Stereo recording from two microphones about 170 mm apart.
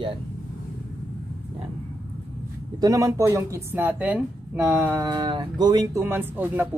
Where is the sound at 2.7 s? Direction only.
20° right (ahead or behind).